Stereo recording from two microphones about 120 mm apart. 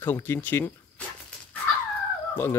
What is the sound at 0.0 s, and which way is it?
Speech, 15° left (ahead or behind).